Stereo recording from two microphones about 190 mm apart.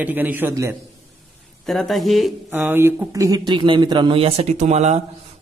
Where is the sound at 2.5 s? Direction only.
10° right (ahead or behind).